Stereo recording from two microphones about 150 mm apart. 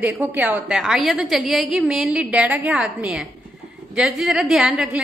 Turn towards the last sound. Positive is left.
turn(degrees=-5)  # may be behind; listen again after turning